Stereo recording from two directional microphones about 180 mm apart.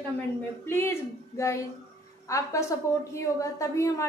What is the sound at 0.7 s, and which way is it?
A woman's voice, 15° left (ahead or behind).